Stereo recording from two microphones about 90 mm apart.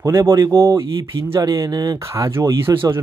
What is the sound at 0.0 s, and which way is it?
Speech, 35° right (ahead or behind).